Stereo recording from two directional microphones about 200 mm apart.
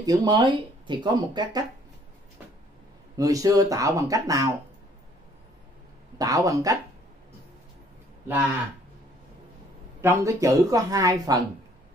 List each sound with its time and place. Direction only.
0.0 s speech: 20° right (ahead or behind)
3.2 s speech: 15° right (ahead or behind)
6.1 s speech: 15° right (ahead or behind)
10.0 s speech: 15° right (ahead or behind)